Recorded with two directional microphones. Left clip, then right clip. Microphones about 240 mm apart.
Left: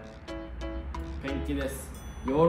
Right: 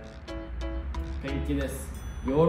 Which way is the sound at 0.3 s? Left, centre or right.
Centre.